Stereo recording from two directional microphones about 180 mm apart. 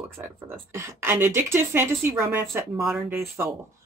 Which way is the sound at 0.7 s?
15° right (ahead or behind).